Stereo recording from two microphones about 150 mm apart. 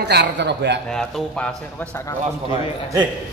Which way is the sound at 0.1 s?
90° right.